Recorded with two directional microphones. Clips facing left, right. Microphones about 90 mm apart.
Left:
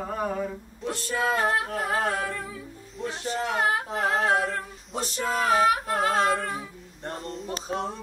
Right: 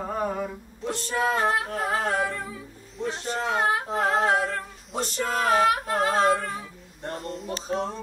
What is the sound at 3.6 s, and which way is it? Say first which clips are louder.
Singing: right 1 dB; 35° right (ahead or behind).